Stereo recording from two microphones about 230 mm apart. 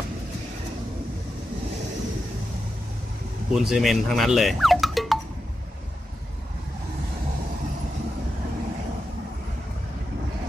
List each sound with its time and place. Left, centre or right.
3.5 s speech: centre